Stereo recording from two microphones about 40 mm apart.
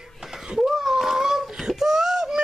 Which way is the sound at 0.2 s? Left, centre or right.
Centre.